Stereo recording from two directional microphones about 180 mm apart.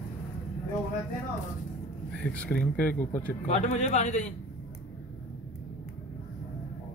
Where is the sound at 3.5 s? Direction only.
40° left (ahead or behind).